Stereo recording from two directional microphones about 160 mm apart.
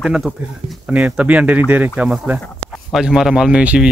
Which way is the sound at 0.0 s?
Centre (ahead or behind).